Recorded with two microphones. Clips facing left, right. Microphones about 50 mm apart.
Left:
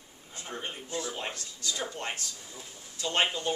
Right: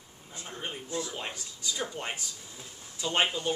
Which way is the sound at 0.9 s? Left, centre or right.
Left.